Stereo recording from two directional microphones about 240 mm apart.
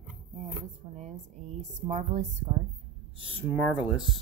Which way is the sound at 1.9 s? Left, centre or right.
Right.